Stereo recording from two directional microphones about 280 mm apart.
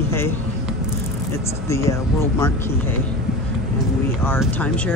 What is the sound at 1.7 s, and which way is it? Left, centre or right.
Speech, centre.